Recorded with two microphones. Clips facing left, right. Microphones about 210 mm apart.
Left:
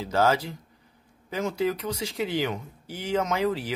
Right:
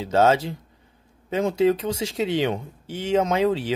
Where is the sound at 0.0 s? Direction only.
25° right (ahead or behind).